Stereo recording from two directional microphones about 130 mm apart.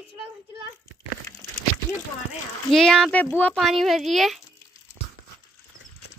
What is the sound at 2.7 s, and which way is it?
Speech, 5° left (ahead or behind).